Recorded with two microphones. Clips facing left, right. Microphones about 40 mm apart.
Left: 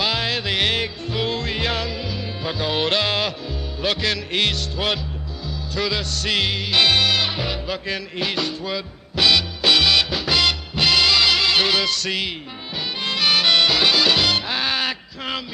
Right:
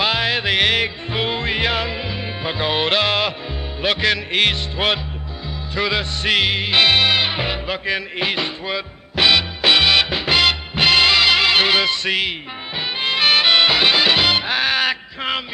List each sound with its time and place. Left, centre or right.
0.0 s music: right